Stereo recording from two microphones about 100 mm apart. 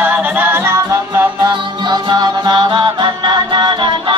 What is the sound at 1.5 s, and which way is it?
Music, 45° right (ahead or behind).